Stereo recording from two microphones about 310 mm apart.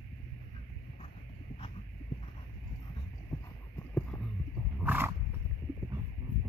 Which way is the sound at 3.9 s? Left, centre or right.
Centre.